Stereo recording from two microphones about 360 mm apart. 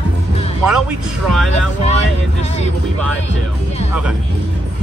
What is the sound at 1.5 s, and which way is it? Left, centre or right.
Speech, centre.